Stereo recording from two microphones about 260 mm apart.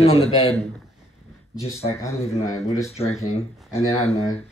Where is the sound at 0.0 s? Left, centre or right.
Left.